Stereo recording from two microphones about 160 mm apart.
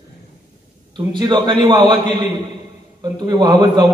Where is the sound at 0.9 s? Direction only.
25° right (ahead or behind).